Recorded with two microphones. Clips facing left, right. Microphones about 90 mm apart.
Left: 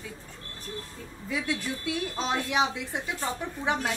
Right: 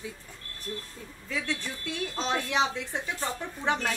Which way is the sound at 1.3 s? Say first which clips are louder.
Left 3 dB; 10° left (ahead or behind).